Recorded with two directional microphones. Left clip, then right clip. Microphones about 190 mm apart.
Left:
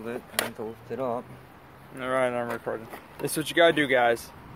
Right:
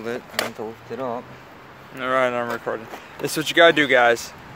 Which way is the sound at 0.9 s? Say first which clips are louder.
Right 1 dB; 15° left (ahead or behind).